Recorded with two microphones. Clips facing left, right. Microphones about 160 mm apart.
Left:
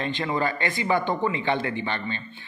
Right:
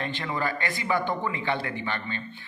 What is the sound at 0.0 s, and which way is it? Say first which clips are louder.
A man's voice: left 4 dB; 20° left (ahead or behind).